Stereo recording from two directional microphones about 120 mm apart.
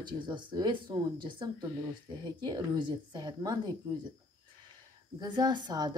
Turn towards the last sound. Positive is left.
turn(degrees=-35)  # may be behind; listen again after turning